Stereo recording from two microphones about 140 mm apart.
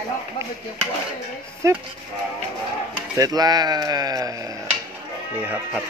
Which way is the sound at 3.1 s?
25° right (ahead or behind).